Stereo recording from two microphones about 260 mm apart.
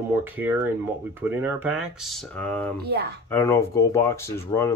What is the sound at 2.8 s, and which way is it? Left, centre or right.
Speech, right.